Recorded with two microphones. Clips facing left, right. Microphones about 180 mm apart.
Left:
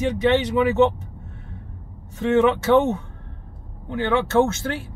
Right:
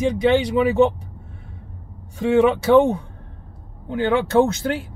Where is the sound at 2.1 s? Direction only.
10° right (ahead or behind).